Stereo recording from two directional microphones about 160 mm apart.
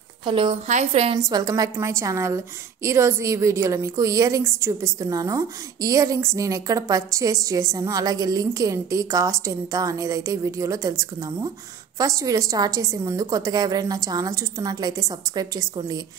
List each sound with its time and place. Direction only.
0.2 s a woman's voice: 35° right (ahead or behind)
0.7 s a woman's voice: 45° right (ahead or behind)
1.3 s a woman's voice: 25° right (ahead or behind)